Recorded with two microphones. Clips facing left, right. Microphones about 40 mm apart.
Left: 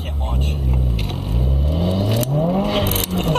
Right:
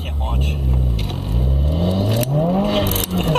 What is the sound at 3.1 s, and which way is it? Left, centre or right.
Music, right.